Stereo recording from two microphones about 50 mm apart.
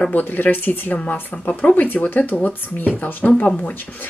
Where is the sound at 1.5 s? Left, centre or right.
Left.